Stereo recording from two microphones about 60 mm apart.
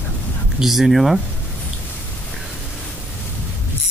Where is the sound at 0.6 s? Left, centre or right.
Centre.